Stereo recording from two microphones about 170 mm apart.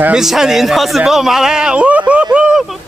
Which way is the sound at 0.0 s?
5° right (ahead or behind).